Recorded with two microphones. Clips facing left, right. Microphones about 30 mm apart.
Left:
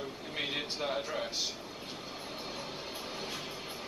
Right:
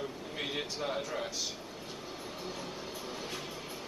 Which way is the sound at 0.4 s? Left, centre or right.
Centre.